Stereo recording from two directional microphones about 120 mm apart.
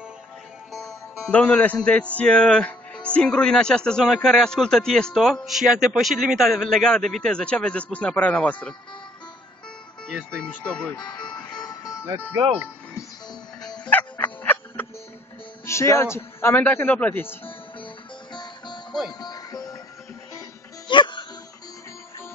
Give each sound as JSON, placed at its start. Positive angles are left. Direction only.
{"t": 1.3, "sound": "a man's voice", "side_deg": 10}
{"t": 10.3, "sound": "a man's voice", "side_deg": 10}
{"t": 11.0, "sound": "music", "side_deg": 40}
{"t": 13.8, "sound": "music", "side_deg": 15}
{"t": 15.6, "sound": "a man's voice", "side_deg": 25}
{"t": 18.3, "sound": "music", "side_deg": 40}
{"t": 20.9, "sound": "music", "side_deg": 40}